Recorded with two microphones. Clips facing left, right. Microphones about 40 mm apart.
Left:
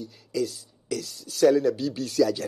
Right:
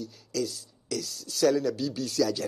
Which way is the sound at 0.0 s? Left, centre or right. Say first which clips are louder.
Left 2 dB; centre.